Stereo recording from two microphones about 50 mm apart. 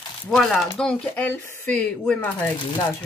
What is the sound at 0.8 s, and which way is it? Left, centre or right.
Speech, left.